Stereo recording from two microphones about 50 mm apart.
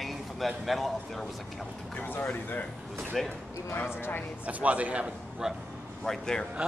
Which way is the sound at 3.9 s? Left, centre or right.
Left.